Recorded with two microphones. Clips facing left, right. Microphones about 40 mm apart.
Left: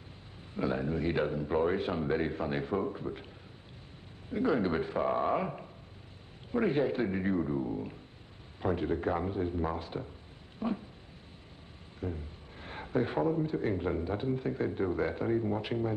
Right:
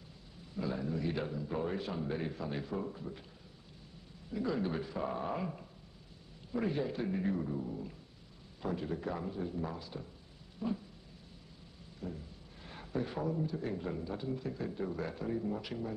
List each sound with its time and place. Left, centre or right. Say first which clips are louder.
0.6 s a man's voice: left 5 dB; left
4.3 s a man's voice: left 6 dB; left
12.0 s a man's voice: left 5 dB; left